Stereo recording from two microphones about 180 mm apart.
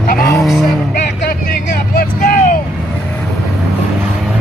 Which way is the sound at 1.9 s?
55° left (ahead or behind).